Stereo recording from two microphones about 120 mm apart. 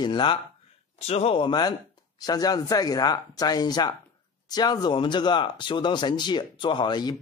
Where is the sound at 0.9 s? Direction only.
60° left (ahead or behind).